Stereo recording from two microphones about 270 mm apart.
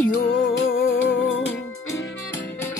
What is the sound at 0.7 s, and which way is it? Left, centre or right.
Music, left.